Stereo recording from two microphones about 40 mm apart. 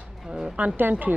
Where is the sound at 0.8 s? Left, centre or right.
Right.